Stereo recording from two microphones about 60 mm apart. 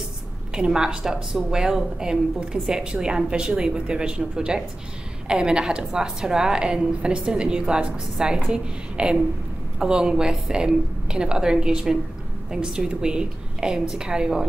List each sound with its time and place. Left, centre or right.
0.6 s a woman's voice: centre